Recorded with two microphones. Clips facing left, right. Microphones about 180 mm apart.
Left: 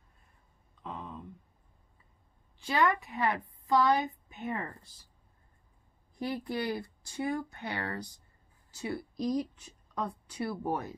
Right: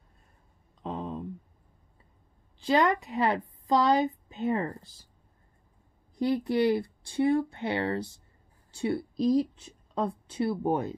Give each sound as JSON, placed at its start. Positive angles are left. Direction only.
{"t": 0.8, "sound": "a sound", "side_deg": -30}
{"t": 2.6, "sound": "a woman's voice", "side_deg": -35}
{"t": 6.2, "sound": "speech", "side_deg": -20}